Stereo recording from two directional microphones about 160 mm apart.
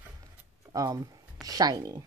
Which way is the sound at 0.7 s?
25° right (ahead or behind).